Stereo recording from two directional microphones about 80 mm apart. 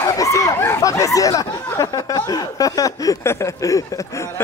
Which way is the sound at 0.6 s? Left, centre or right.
Left.